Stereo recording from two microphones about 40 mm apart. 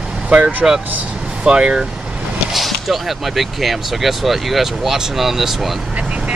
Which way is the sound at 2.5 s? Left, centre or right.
Centre.